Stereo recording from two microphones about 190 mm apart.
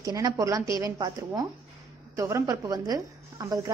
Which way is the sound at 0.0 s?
20° right (ahead or behind).